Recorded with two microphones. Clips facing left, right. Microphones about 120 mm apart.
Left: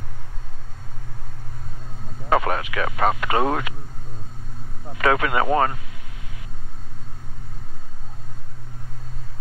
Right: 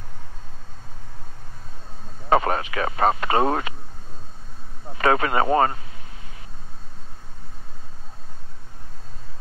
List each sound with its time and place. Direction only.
2.2 s speech: 30° right (ahead or behind)
4.9 s speech: 30° right (ahead or behind)